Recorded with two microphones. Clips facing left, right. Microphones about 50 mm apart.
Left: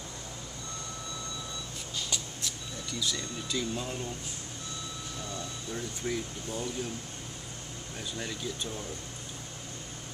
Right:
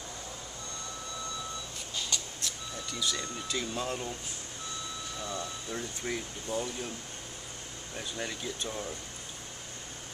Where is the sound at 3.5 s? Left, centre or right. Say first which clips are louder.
Even; centre.